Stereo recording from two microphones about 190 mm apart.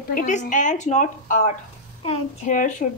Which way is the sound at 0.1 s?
40° left (ahead or behind).